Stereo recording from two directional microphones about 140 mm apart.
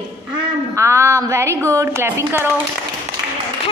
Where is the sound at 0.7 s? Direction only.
20° right (ahead or behind).